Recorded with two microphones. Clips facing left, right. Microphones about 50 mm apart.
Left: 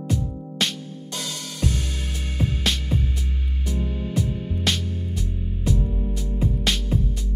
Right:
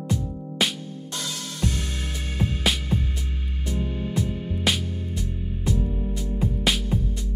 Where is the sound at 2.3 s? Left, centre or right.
Centre.